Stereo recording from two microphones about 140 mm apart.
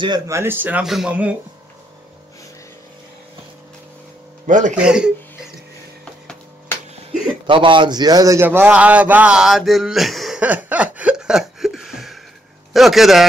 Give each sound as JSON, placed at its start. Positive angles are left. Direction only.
{"t": 0.3, "sound": "speech", "side_deg": -15}
{"t": 4.5, "sound": "speech", "side_deg": -65}
{"t": 4.7, "sound": "a man's voice", "side_deg": -5}
{"t": 7.4, "sound": "a man's voice", "side_deg": -35}
{"t": 8.5, "sound": "a sound", "side_deg": -10}
{"t": 12.7, "sound": "a man's voice", "side_deg": 0}